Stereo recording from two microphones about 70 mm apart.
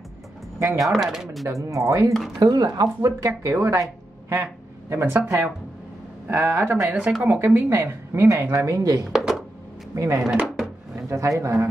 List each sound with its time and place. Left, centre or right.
0.6 s speech: right
0.8 s speech: centre
1.5 s speech: right
2.3 s speech: right
4.3 s a sound: right
6.3 s speech: right
7.0 s speech: centre
7.2 s speech: right
9.1 s a sound: centre
9.9 s speech: right
10.4 s a sound: centre
11.1 s speech: right